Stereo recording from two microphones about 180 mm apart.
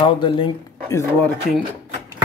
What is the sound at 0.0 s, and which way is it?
Speech, 30° left (ahead or behind).